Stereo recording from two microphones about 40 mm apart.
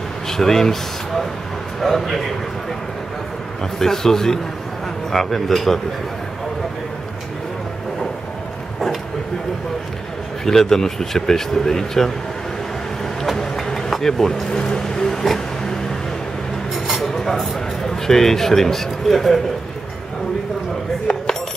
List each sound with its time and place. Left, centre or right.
0.3 s a man's voice: centre
3.8 s speech: centre
10.4 s speech: centre
13.2 s a sound: centre
17.0 s dishes: centre
17.8 s speech: centre